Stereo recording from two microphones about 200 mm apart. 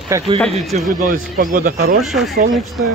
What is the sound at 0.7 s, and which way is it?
Speech, 45° right (ahead or behind).